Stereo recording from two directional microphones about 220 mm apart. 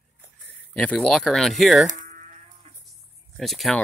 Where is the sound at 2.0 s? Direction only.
35° right (ahead or behind).